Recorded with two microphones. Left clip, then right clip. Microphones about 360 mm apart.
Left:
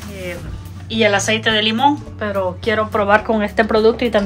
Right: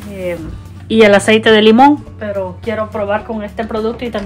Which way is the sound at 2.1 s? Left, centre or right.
Centre.